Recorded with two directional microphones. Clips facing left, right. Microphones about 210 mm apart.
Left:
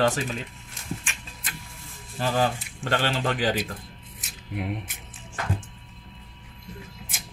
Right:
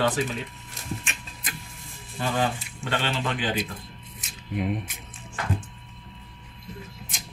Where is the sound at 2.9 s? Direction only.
45° left (ahead or behind).